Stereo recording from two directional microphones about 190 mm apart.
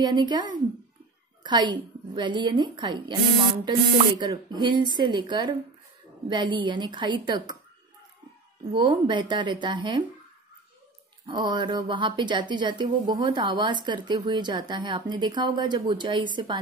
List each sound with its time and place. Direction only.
0.0 s a child's voice: 25° right (ahead or behind)
4.2 s speech: 25° right (ahead or behind)
8.7 s speech: 25° right (ahead or behind)
11.2 s speech: 25° right (ahead or behind)